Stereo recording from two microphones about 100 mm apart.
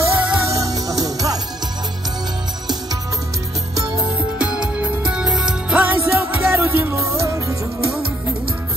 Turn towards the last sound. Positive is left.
turn(degrees=-30)  # may be behind; listen again after turning